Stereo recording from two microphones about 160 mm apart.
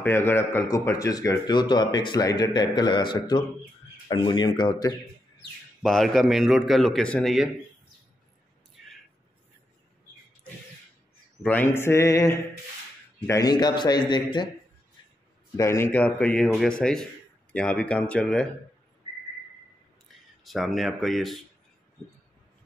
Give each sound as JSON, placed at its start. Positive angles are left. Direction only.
{"t": 0.0, "sound": "speech", "side_deg": 15}
{"t": 5.8, "sound": "a man's voice", "side_deg": 0}
{"t": 11.4, "sound": "speech", "side_deg": 10}
{"t": 15.5, "sound": "a man's voice", "side_deg": 20}
{"t": 20.4, "sound": "a man's voice", "side_deg": 0}